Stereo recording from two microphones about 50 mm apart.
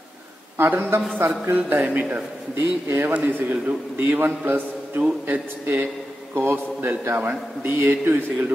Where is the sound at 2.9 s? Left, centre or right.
Right.